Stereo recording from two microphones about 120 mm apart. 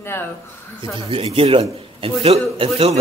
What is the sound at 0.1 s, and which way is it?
Speech, 20° left (ahead or behind).